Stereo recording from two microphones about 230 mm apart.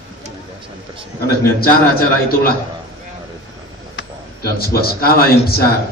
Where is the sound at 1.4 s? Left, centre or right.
Left.